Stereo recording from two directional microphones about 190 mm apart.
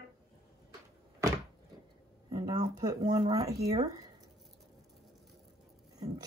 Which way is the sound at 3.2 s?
20° right (ahead or behind).